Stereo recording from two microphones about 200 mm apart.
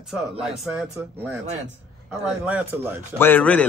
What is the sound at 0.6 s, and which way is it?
Speech, 5° right (ahead or behind).